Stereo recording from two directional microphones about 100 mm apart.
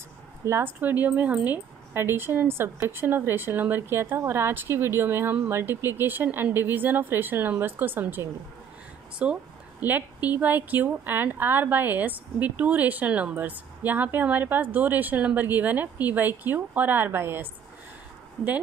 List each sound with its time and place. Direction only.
0.5 s a woman's voice: 25° right (ahead or behind)